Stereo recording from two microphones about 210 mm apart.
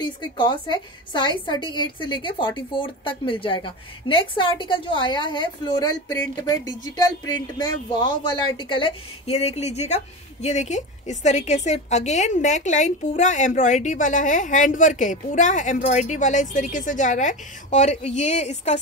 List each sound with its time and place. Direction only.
0.0 s a woman's voice: 20° left (ahead or behind)